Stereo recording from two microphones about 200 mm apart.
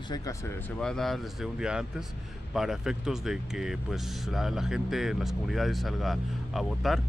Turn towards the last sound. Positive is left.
turn(degrees=0)  # may be behind; listen again after turning